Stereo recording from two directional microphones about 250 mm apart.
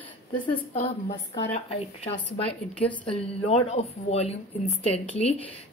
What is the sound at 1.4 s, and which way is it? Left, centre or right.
A woman's voice, left.